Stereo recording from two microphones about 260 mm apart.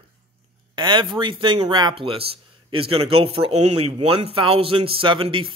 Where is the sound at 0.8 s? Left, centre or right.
Centre.